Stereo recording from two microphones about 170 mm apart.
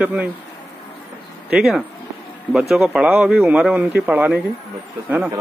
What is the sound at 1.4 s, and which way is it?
A man's voice, 5° right (ahead or behind).